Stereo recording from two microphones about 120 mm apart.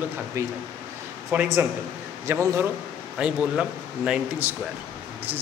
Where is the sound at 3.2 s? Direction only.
10° right (ahead or behind).